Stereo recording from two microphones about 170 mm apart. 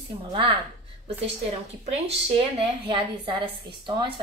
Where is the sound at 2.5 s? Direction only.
30° right (ahead or behind).